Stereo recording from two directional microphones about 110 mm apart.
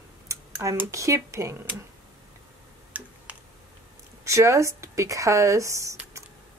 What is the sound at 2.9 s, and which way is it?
Tick-tock, 15° right (ahead or behind).